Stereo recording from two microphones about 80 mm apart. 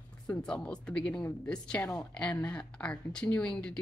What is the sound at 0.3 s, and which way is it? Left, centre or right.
A woman's voice, centre.